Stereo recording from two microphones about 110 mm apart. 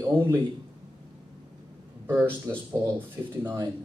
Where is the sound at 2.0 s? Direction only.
20° right (ahead or behind).